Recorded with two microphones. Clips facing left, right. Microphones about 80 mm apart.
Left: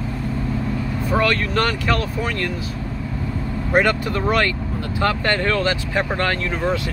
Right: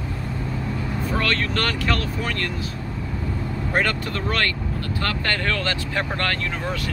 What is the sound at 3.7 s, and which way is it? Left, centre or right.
Speech, centre.